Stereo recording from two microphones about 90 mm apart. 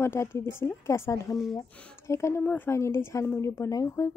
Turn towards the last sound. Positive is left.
turn(degrees=35)  # may be behind; listen again after turning